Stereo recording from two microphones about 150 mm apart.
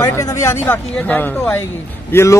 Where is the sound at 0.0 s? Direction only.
20° left (ahead or behind).